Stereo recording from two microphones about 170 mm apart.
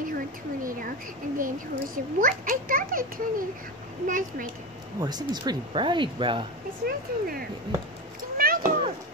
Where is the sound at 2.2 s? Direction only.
55° right (ahead or behind).